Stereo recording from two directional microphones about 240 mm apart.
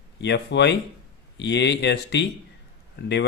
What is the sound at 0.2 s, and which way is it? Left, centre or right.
Speech, left.